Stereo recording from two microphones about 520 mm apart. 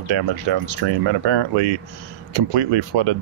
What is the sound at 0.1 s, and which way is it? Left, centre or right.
Speech, right.